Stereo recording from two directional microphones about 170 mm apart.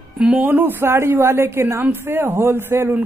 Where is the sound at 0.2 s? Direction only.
10° right (ahead or behind).